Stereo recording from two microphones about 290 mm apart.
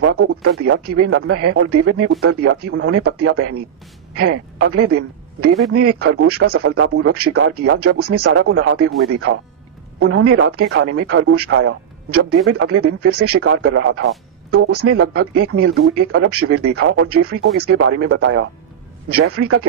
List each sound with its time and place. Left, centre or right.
0.1 s speech: right